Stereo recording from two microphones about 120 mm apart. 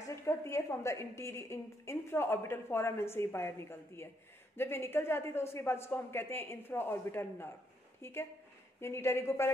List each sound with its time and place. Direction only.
0.1 s a woman's voice: 25° left (ahead or behind)